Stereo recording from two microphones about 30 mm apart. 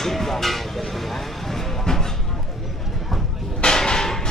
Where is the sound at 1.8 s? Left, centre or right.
Centre.